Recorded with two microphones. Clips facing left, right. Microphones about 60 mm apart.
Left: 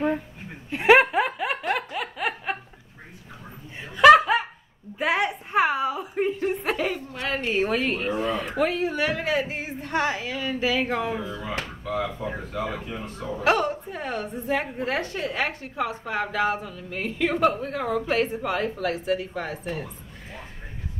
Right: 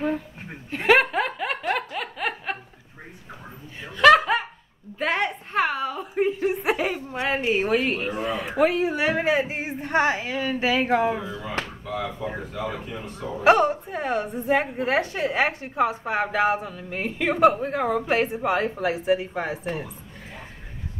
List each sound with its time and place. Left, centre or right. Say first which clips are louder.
0.7 s snicker: left 2 dB; centre
3.8 s laughter: left 2 dB; centre
4.9 s a sound: left 1 dB; centre
6.1 s chuckle: right 5 dB; centre
7.1 s dog: right 4 dB; centre
7.6 s a sound: right 2 dB; centre
8.2 s a man's voice: right 5 dB; centre
12.5 s speech: left 1 dB; left
13.4 s a woman's voice: right 5 dB; centre
14.5 s speech: right 4 dB; centre